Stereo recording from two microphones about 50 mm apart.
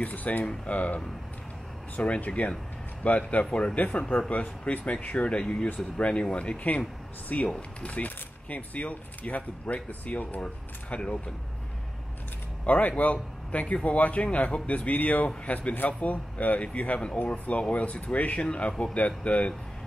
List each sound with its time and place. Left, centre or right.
0.0 s speech: left
12.6 s speech: left